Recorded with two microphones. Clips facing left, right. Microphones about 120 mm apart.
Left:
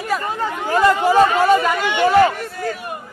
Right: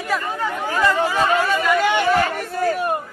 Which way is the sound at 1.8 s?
45° right (ahead or behind).